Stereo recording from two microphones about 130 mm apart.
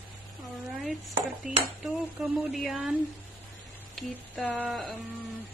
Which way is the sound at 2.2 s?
Centre (ahead or behind).